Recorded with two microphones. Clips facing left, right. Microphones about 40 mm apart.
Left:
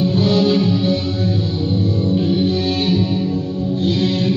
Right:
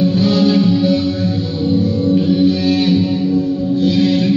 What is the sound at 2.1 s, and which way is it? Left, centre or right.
Music, left.